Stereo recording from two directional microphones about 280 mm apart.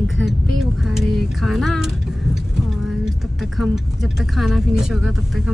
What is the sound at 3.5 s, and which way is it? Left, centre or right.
Speech, centre.